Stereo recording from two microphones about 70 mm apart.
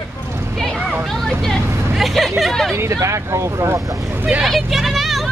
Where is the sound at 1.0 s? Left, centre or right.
Centre.